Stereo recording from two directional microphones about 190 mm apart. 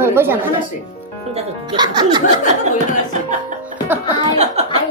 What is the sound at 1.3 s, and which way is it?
Speech, 25° right (ahead or behind).